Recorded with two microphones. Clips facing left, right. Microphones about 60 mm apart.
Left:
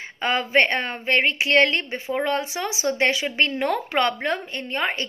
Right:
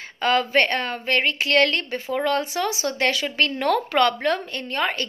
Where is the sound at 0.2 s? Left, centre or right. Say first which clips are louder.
Right 1 dB; centre.